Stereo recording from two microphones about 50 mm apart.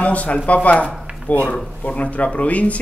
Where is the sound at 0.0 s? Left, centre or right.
Left.